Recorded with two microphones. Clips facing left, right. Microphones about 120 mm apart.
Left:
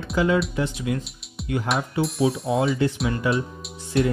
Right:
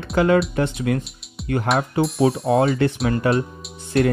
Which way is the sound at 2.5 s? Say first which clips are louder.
Right 4 dB; 60° right (ahead or behind).